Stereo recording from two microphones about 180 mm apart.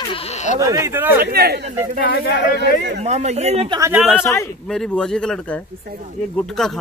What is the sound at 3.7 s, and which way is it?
Speech, 10° right (ahead or behind).